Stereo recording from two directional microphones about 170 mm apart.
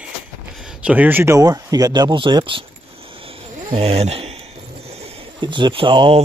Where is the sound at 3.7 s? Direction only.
35° right (ahead or behind).